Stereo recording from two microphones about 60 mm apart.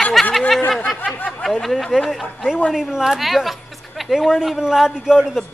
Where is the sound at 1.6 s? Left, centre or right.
Centre.